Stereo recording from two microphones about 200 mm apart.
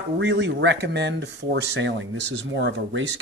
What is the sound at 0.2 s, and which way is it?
Speech, 65° right (ahead or behind).